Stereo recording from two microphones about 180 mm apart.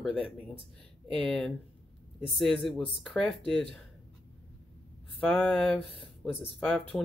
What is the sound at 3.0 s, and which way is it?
Speech, 5° left (ahead or behind).